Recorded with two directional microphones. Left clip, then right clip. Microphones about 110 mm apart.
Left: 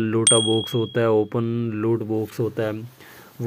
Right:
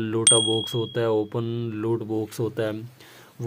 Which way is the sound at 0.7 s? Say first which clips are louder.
Left 4 dB; 35° left (ahead or behind).